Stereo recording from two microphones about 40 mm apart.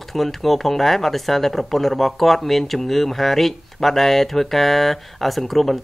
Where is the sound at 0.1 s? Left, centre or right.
Centre.